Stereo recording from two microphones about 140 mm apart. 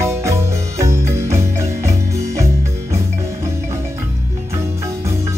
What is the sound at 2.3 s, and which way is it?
Music, 20° right (ahead or behind).